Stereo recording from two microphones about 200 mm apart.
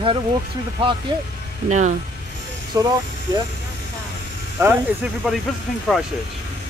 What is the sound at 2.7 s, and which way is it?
Speech, 20° right (ahead or behind).